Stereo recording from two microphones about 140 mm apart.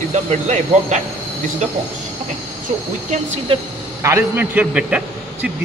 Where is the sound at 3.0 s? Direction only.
55° right (ahead or behind).